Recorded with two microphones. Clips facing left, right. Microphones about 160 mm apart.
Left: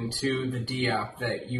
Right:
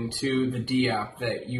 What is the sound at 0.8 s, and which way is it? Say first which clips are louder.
Speech: right 1 dB; 15° right (ahead or behind).